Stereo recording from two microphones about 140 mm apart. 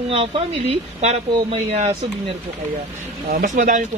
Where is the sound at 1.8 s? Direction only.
50° right (ahead or behind).